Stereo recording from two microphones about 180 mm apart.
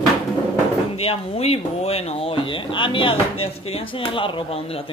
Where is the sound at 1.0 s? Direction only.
30° left (ahead or behind).